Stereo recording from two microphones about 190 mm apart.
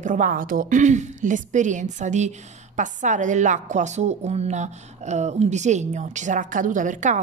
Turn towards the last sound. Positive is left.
turn(degrees=-40)  # may be behind; listen again after turning